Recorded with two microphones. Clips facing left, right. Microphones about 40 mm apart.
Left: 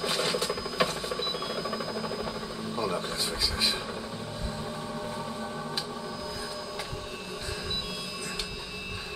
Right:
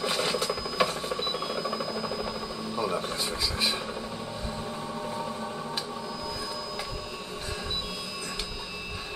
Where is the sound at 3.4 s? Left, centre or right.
Right.